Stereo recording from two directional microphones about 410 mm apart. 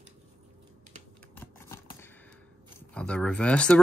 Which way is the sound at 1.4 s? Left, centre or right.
Centre.